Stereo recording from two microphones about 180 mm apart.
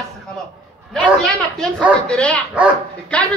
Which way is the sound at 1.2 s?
Centre (ahead or behind).